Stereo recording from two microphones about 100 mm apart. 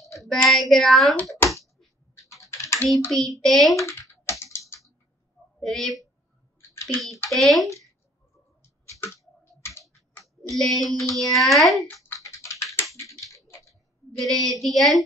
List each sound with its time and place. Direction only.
0.2 s speech: centre (ahead or behind)
2.4 s typing: 30° left (ahead or behind)
3.1 s speech: centre (ahead or behind)
3.7 s typing: 30° left (ahead or behind)
5.6 s speech: 5° left (ahead or behind)
6.7 s a sound: 25° left (ahead or behind)
7.2 s speech: centre (ahead or behind)
9.4 s computer keyboard: 25° left (ahead or behind)
10.2 s speech: centre (ahead or behind)
12.2 s typing: 30° left (ahead or behind)
13.0 s a sound: 35° left (ahead or behind)
13.7 s a woman's voice: centre (ahead or behind)